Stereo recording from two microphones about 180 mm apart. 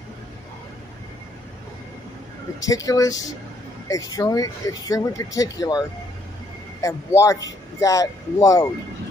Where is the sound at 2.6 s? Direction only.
20° left (ahead or behind).